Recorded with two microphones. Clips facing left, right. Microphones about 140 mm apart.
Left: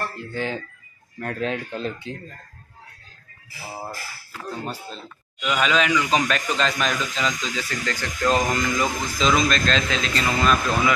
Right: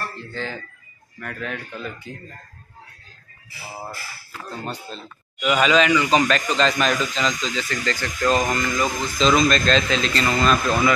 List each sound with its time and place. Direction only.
0.1 s speech: 10° left (ahead or behind)
1.2 s speech: 30° left (ahead or behind)
4.6 s speech: 5° left (ahead or behind)